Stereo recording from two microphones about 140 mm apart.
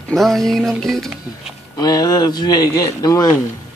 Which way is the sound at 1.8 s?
25° left (ahead or behind).